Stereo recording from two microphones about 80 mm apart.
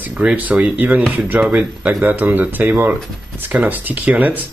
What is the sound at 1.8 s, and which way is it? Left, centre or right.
Speech, centre.